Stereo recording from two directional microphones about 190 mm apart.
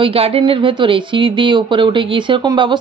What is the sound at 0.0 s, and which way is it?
Speech, 30° right (ahead or behind).